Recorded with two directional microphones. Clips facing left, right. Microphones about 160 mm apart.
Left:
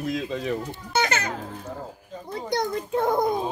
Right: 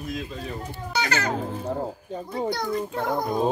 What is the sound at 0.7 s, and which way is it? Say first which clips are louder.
Speech: right 2 dB; 20° left (ahead or behind).